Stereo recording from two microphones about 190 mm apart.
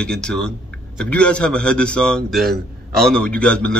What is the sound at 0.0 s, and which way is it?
A man's voice, 5° left (ahead or behind).